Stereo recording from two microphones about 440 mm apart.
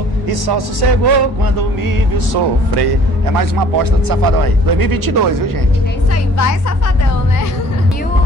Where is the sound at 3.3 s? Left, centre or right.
Right.